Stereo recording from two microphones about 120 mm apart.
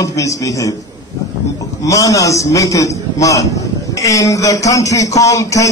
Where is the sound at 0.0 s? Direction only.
30° left (ahead or behind).